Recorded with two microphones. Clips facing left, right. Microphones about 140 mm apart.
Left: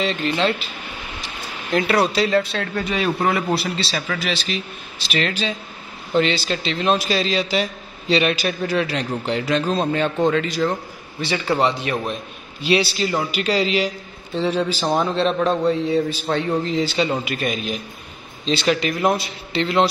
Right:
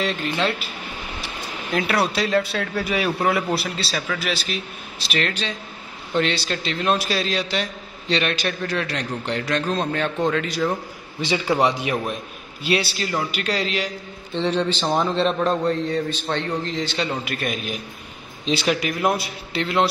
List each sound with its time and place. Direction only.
0.0 s a man's voice: centre (ahead or behind)
11.1 s a man's voice: 15° right (ahead or behind)
12.6 s a man's voice: centre (ahead or behind)